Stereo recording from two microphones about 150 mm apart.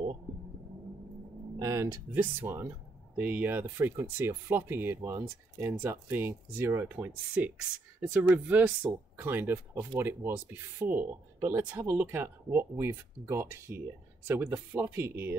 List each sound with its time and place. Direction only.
1.6 s speech: 20° right (ahead or behind)